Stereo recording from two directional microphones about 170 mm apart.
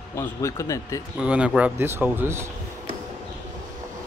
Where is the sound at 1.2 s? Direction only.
5° right (ahead or behind).